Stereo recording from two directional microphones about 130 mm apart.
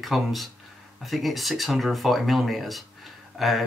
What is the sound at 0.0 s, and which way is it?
Speech, centre (ahead or behind).